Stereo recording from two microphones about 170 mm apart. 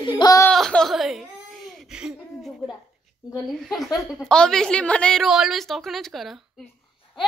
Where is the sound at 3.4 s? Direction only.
Centre (ahead or behind).